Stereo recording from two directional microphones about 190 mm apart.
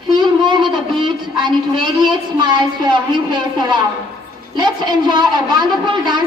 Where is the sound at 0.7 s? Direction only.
25° right (ahead or behind).